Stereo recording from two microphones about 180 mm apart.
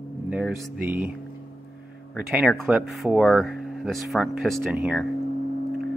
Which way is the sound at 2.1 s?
5° right (ahead or behind).